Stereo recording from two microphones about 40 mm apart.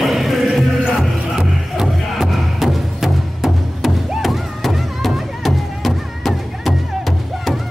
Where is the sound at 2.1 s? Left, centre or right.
Centre.